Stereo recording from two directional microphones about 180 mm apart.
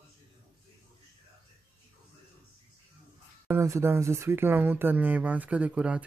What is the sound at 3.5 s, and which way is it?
Speech, 15° right (ahead or behind).